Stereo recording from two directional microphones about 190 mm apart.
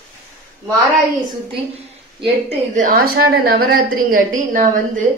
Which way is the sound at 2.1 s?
30° right (ahead or behind).